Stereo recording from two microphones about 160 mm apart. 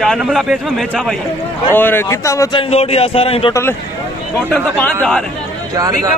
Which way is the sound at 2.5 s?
35° left (ahead or behind).